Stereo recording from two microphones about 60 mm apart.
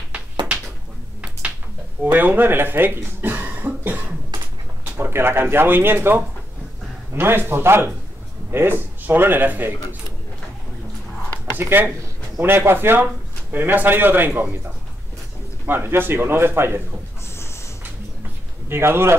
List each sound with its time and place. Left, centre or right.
2.0 s speech: right
11.5 s speech: right
15.6 s speech: right
18.7 s speech: right